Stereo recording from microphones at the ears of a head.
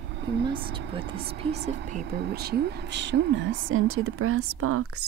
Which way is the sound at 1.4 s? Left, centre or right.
Right.